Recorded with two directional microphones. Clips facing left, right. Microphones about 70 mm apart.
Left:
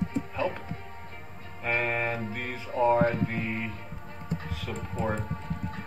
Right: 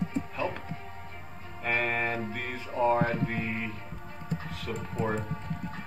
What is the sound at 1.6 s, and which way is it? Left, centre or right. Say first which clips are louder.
Speech: left 1 dB; centre.